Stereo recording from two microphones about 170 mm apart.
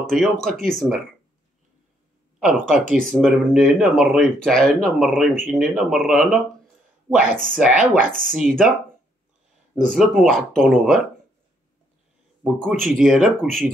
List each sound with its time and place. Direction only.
0.0 s speech: 5° left (ahead or behind)
2.4 s speech: centre (ahead or behind)
7.5 s speech: 5° right (ahead or behind)
8.0 s speech: 55° right (ahead or behind)
8.4 s speech: 5° right (ahead or behind)
9.9 s speech: centre (ahead or behind)
12.4 s speech: 5° right (ahead or behind)